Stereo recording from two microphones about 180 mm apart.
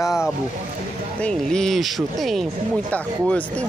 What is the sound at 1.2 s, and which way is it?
Speech, 5° left (ahead or behind).